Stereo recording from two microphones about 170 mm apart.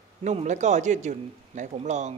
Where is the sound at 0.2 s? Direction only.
45° right (ahead or behind).